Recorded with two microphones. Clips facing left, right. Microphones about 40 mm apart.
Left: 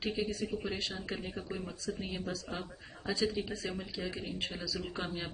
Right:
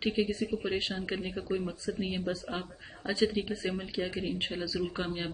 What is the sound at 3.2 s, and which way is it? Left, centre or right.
Speech, right.